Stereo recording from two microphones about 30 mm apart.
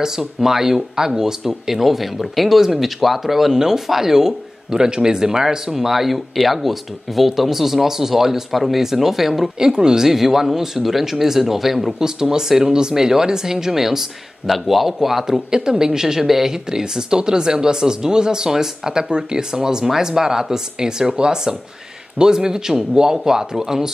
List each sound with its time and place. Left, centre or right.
0.0 s speech: centre
9.6 s speech: right
10.0 s speech: centre
12.0 s speech: right